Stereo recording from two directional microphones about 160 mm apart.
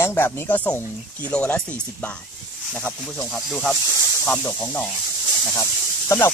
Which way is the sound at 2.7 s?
5° left (ahead or behind).